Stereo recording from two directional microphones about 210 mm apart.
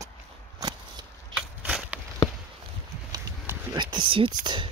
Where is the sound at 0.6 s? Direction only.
20° right (ahead or behind).